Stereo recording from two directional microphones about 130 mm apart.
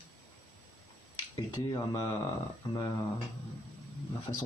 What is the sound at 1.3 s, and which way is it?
Speech, 35° left (ahead or behind).